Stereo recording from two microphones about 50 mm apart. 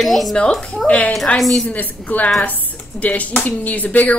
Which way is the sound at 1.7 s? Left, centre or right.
Left.